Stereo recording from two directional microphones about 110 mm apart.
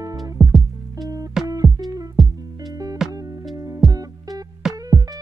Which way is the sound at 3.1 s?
35° right (ahead or behind).